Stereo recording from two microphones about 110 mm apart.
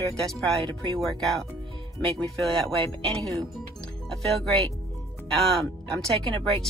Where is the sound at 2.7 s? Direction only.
55° right (ahead or behind).